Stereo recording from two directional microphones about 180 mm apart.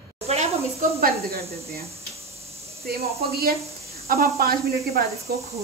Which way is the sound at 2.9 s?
60° right (ahead or behind).